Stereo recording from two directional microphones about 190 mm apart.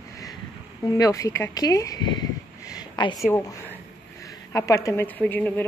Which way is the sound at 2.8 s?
25° left (ahead or behind).